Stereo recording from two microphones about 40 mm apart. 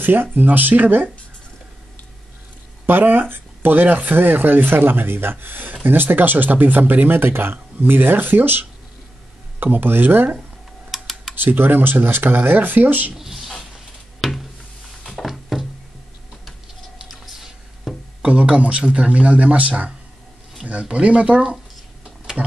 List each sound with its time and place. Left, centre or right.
0.0 s speech: right
2.9 s speech: right
7.1 s speech: right
10.9 s typing: centre
11.3 s speech: right
13.2 s a sound: centre
15.1 s music: centre
17.1 s squish: centre
18.2 s speech: right
20.9 s speech: right